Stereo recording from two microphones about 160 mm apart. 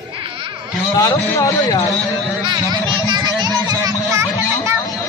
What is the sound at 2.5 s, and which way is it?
Speech, 30° right (ahead or behind).